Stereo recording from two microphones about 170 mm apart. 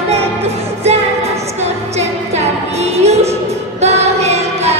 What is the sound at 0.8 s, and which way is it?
Music, 40° right (ahead or behind).